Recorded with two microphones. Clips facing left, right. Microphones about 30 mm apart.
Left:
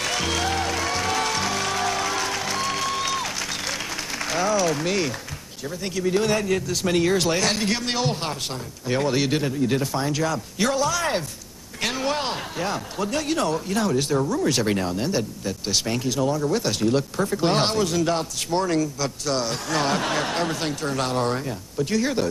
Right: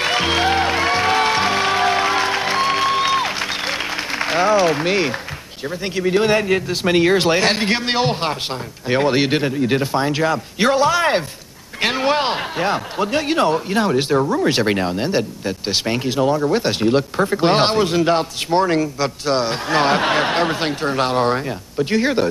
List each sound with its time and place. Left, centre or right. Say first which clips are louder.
0.0 s music: right 7 dB; right
5.9 s speech: right 6 dB; right